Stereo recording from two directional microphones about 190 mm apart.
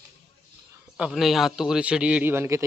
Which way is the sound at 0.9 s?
5° right (ahead or behind).